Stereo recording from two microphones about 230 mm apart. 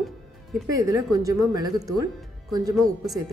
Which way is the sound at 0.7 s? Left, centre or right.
Centre.